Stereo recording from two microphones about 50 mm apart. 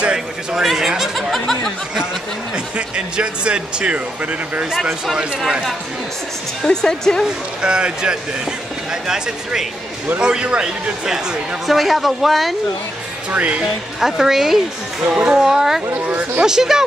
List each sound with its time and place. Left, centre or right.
0.0 s a sound: centre
0.6 s speech: centre
1.1 s a sound: centre
1.4 s a sound: centre
3.2 s speech: right
6.7 s speech: centre
7.2 s speech: centre
11.6 s a woman's voice: centre
13.3 s speech: right
13.9 s speech: centre
15.1 s speech: right
15.4 s speech: centre